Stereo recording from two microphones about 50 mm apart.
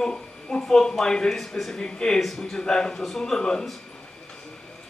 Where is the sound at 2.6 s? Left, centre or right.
Centre.